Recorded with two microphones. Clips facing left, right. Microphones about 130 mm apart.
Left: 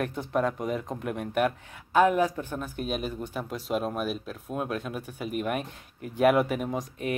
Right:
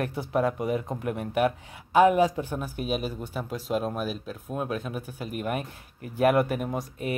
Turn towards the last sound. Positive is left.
turn(degrees=-5)  # may be behind; listen again after turning